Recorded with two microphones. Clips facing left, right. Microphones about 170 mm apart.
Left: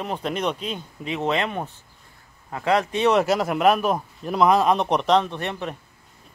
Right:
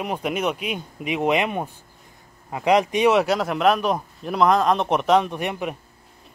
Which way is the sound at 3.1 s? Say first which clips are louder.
Even; centre (ahead or behind).